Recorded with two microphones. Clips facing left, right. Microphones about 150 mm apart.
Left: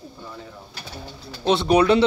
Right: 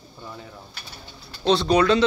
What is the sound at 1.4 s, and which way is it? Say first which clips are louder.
Speech: left 1 dB; 15° left (ahead or behind).